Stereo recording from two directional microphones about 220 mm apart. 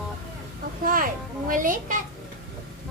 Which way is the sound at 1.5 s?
35° right (ahead or behind).